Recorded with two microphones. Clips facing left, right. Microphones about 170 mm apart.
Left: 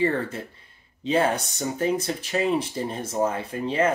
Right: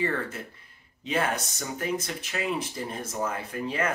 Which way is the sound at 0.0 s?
30° left (ahead or behind).